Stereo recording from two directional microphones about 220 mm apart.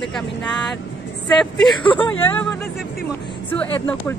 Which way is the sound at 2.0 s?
5° left (ahead or behind).